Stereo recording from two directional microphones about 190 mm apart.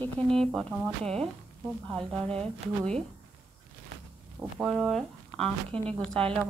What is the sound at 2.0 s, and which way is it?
Speech, 30° right (ahead or behind).